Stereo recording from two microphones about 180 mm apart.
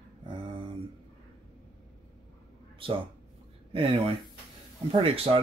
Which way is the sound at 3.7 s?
30° right (ahead or behind).